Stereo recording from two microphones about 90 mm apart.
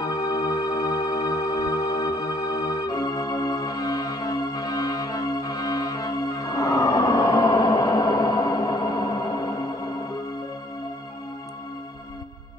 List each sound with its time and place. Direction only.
0.0 s music: 45° left (ahead or behind)